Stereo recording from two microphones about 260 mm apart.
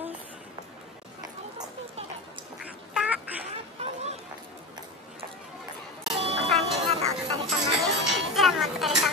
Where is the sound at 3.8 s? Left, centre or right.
Right.